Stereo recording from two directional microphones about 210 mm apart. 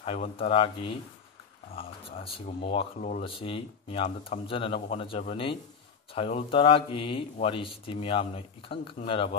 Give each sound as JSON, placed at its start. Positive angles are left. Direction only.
{"t": 0.0, "sound": "speech", "side_deg": 30}